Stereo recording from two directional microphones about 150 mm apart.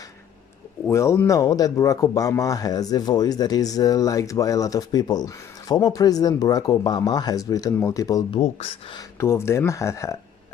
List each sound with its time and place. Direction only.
0.8 s speech: 20° left (ahead or behind)
8.3 s speech: 40° left (ahead or behind)
9.2 s speech: 20° left (ahead or behind)